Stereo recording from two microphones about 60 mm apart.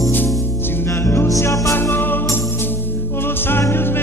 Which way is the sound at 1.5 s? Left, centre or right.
Left.